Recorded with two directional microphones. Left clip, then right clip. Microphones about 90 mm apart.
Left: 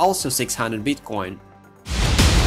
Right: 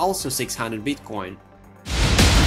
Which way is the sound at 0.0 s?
40° left (ahead or behind).